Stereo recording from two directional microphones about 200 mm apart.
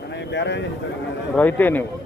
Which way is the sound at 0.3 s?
60° left (ahead or behind).